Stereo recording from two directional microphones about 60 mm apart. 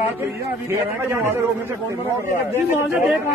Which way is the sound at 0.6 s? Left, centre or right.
Right.